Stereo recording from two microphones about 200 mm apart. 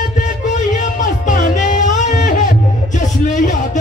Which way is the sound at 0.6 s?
40° left (ahead or behind).